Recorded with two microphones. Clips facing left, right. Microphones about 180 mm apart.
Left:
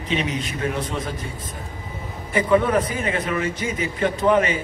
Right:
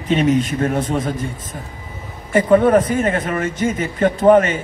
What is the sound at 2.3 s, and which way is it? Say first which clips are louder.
A man's voice: right 6 dB; 50° right (ahead or behind).